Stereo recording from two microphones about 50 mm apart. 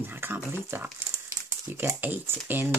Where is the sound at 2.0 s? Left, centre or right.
Right.